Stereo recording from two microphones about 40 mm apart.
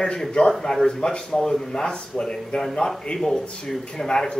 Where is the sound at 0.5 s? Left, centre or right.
Centre.